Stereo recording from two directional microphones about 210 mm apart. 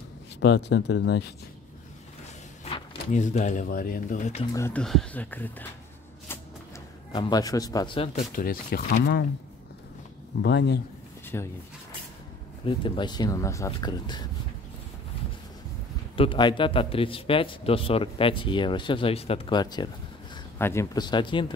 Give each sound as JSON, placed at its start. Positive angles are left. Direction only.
{"t": 0.4, "sound": "speech", "side_deg": 55}
{"t": 2.6, "sound": "speech", "side_deg": 35}
{"t": 4.6, "sound": "speech", "side_deg": 10}
{"t": 7.1, "sound": "a man's voice", "side_deg": 20}
{"t": 10.4, "sound": "speech", "side_deg": 55}
{"t": 11.3, "sound": "speech", "side_deg": 10}
{"t": 12.6, "sound": "a man's voice", "side_deg": 25}
{"t": 16.2, "sound": "a man's voice", "side_deg": 25}